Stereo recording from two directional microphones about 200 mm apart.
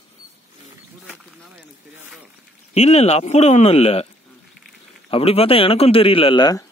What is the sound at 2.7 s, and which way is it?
Speech, 35° left (ahead or behind).